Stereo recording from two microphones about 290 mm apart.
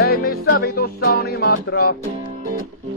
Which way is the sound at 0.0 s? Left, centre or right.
Left.